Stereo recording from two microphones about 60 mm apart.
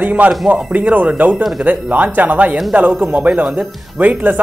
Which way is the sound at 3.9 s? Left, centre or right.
Right.